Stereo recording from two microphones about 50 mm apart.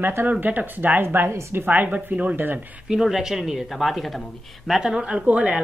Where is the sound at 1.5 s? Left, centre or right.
Right.